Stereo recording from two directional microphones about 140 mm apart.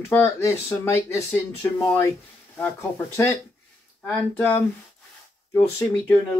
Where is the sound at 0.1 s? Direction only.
20° left (ahead or behind).